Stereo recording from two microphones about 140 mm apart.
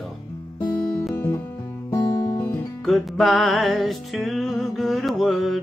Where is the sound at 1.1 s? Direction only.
15° left (ahead or behind).